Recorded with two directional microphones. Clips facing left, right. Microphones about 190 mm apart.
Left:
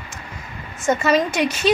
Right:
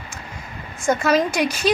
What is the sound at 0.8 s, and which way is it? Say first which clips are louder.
Speech: even; 5° left (ahead or behind).